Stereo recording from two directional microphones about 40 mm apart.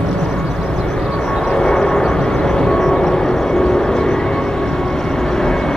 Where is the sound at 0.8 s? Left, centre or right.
Centre.